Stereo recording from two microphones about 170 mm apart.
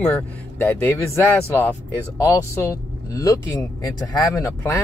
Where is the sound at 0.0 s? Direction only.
10° left (ahead or behind).